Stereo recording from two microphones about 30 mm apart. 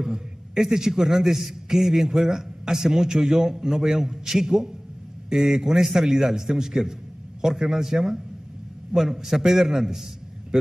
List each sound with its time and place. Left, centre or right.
0.0 s a man's voice: centre